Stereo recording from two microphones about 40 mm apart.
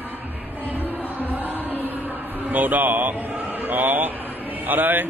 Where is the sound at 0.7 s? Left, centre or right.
Right.